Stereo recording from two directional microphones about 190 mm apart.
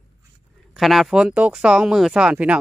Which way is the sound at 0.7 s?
Centre (ahead or behind).